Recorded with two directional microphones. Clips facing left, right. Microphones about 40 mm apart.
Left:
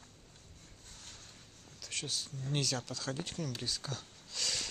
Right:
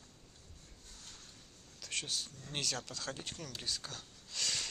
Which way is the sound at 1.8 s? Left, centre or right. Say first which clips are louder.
Even; right.